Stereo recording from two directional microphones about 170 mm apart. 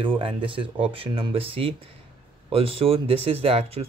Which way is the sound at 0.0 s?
30° right (ahead or behind).